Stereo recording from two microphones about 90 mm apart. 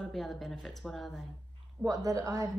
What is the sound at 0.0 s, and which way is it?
Speech, 5° left (ahead or behind).